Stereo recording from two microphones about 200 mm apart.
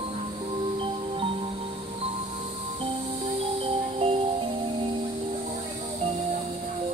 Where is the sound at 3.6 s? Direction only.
30° right (ahead or behind).